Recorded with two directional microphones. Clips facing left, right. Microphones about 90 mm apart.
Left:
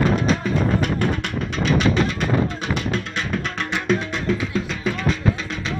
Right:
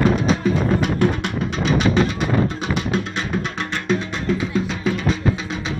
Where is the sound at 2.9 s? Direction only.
10° right (ahead or behind).